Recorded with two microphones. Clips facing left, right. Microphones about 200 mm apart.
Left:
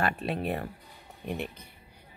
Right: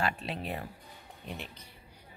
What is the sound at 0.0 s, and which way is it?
Speech, 55° left (ahead or behind).